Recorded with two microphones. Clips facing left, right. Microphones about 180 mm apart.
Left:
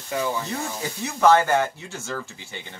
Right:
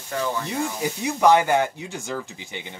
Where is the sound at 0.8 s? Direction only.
15° right (ahead or behind).